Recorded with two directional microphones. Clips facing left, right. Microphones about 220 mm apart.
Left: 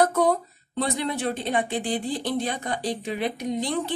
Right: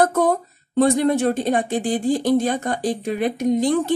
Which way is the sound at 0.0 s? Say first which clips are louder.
Right 3 dB; 50° right (ahead or behind).